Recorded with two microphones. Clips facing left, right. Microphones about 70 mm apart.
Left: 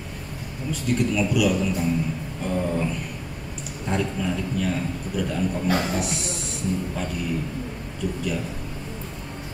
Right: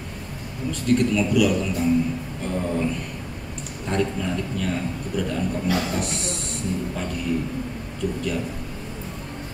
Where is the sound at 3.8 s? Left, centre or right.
Centre.